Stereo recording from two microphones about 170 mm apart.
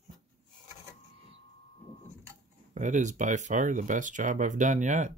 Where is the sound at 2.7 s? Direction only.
45° right (ahead or behind).